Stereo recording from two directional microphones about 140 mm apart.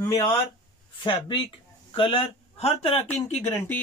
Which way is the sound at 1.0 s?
35° left (ahead or behind).